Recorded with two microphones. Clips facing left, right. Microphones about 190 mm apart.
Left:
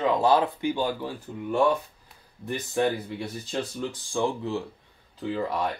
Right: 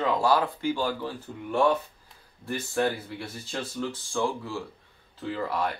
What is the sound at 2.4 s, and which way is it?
Speech, 15° left (ahead or behind).